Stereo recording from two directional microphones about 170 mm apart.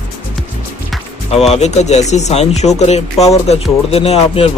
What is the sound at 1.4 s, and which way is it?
Speech, 40° left (ahead or behind).